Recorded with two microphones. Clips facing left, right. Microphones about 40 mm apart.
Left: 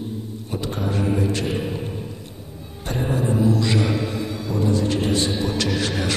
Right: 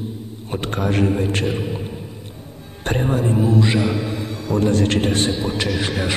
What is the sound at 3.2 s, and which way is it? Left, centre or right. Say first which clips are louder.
Speech: even; right.